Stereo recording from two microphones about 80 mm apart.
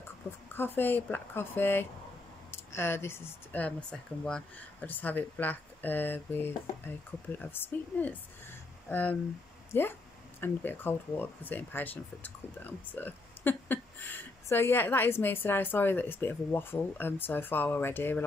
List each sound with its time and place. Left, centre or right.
0.6 s speech: left
3.5 s speech: centre